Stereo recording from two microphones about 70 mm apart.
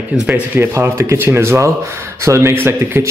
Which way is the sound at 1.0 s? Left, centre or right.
Right.